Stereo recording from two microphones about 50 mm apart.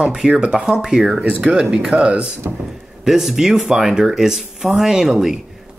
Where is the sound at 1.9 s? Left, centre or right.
Right.